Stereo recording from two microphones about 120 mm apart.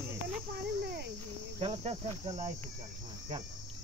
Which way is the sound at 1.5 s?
50° right (ahead or behind).